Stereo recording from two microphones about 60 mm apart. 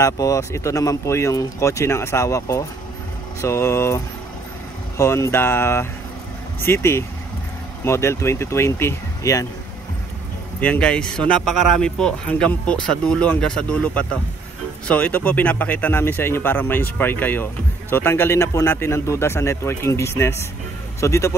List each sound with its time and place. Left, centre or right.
0.0 s speech: left
1.1 s speech: left
9.2 s speech: left
10.6 s speech: centre; by 21.4 s left